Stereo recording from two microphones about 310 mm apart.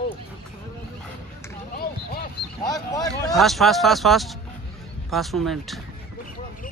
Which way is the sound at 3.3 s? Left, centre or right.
Centre.